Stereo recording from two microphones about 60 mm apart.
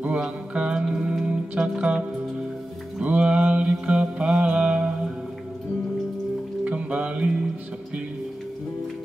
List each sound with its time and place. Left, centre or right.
0.6 s music: centre
6.6 s music: right